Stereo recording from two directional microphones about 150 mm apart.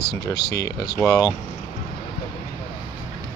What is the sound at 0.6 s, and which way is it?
Speech, 20° left (ahead or behind).